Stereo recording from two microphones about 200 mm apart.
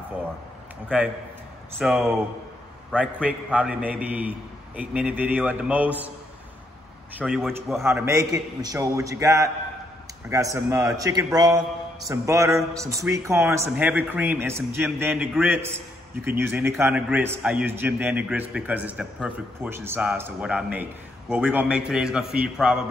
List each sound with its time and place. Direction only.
0.8 s a man's voice: 5° right (ahead or behind)
7.2 s a man's voice: 5° right (ahead or behind)
7.8 s a man's voice: 15° right (ahead or behind)